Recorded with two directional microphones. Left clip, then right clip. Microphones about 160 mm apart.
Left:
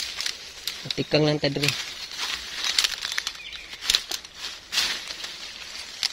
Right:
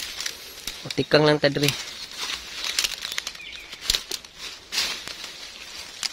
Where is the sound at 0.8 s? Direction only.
50° right (ahead or behind).